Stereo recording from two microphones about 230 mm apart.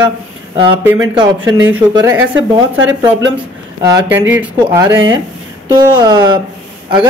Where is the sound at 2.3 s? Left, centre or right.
Right.